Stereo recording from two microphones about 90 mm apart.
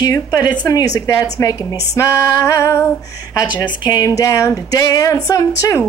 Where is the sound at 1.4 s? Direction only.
35° left (ahead or behind).